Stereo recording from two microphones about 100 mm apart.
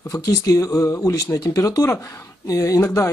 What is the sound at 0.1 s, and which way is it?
Speech, 35° left (ahead or behind).